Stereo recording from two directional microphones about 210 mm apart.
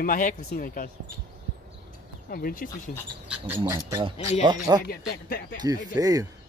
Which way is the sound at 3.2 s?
10° right (ahead or behind).